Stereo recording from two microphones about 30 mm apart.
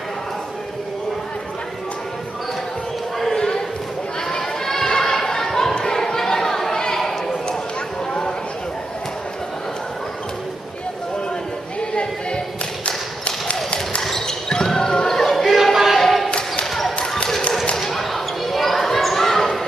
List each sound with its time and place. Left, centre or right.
3.3 s a sound: left
4.8 s basketball bounce: left
6.0 s chatter: centre
11.9 s a sound: left
14.2 s basketball bounce: left
15.1 s music: centre
15.5 s a sound: centre
16.0 s basketball bounce: centre
16.3 s basketball bounce: left
17.7 s basketball bounce: centre